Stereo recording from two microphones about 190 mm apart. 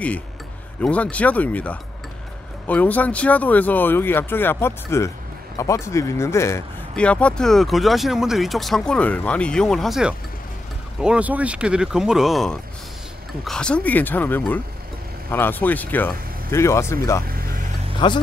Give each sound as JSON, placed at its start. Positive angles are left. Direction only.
{"t": 0.7, "sound": "speech", "side_deg": 5}